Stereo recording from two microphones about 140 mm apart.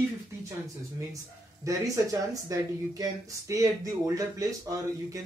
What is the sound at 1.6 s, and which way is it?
Speech, 25° right (ahead or behind).